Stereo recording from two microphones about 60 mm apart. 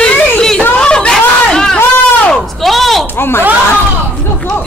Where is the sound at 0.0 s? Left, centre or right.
Centre.